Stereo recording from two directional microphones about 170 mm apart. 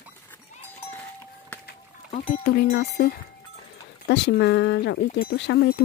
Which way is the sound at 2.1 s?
50° left (ahead or behind).